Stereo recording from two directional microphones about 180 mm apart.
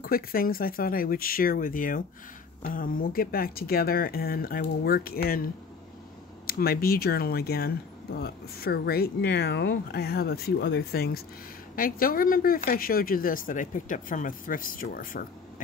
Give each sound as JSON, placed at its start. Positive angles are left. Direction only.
{"t": 0.0, "sound": "a woman's voice", "side_deg": 55}